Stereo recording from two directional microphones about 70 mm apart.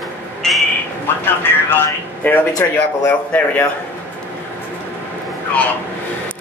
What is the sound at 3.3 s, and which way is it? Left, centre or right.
Speech, left.